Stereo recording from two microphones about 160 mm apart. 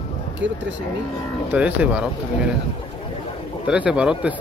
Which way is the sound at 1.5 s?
10° right (ahead or behind).